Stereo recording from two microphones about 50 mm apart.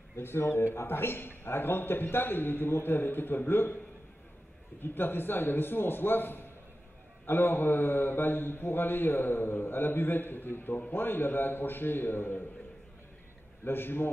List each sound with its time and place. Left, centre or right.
0.2 s a man's voice: left
4.8 s a man's voice: left
13.7 s a man's voice: left